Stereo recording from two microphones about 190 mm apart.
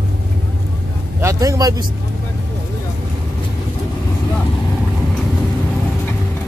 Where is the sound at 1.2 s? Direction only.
15° right (ahead or behind).